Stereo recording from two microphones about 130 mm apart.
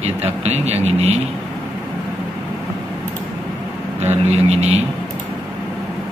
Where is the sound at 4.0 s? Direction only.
55° right (ahead or behind).